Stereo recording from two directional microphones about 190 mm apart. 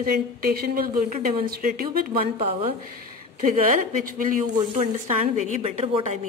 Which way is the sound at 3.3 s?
45° right (ahead or behind).